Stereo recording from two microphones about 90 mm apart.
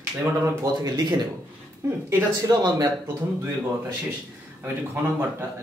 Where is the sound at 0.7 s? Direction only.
45° right (ahead or behind).